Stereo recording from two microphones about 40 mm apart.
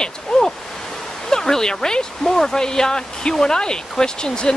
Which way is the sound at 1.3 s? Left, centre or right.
Centre.